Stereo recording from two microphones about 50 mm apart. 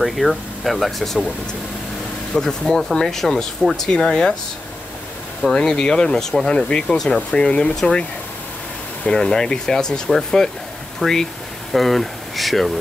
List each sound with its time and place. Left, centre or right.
0.0 s speech: centre
2.3 s speech: centre
5.4 s speech: centre
9.1 s speech: centre